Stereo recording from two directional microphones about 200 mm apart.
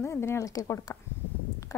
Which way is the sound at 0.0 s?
15° left (ahead or behind).